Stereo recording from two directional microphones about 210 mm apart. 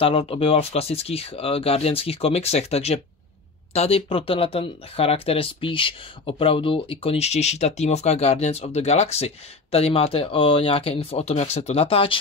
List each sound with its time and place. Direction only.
0.0 s speech: 25° left (ahead or behind)